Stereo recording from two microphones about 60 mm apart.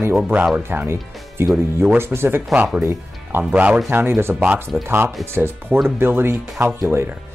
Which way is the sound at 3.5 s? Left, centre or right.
Right.